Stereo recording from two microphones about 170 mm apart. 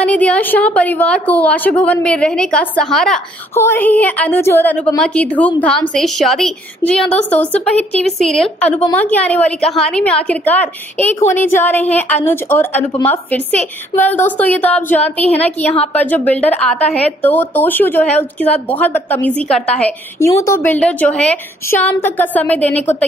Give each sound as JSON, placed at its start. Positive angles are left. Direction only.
{"t": 0.0, "sound": "a woman's voice", "side_deg": 5}